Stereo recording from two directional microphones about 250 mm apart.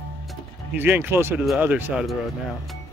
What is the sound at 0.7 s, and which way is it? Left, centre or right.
Speech, centre.